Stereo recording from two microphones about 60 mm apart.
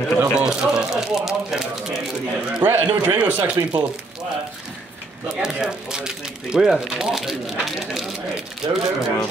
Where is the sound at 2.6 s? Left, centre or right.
Right.